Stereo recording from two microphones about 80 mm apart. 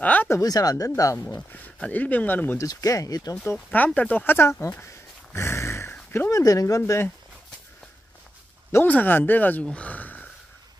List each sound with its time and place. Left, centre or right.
0.0 s a sound: centre
0.4 s speech: left
1.1 s speech: left
2.5 s speech: left
3.7 s speech: centre
4.8 s dog: left
6.1 s speech: left
6.4 s speech: left
8.8 s speech: left